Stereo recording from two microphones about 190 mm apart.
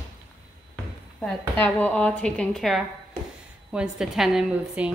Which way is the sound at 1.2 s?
5° left (ahead or behind).